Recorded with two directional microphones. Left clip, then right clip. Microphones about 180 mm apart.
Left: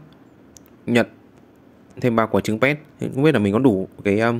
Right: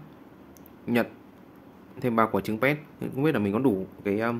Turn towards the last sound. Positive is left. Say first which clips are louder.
# left 8 dB
turn(degrees=30)  # may be behind; listen again after turning